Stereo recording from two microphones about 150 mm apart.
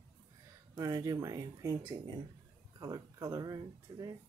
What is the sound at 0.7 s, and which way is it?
Speech, 25° right (ahead or behind).